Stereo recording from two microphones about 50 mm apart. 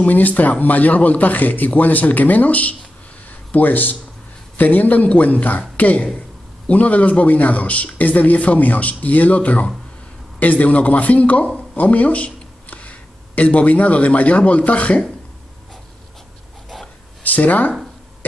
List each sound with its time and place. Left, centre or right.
0.0 s a man's voice: left
3.3 s a sound: left
4.6 s a man's voice: left
17.2 s speech: left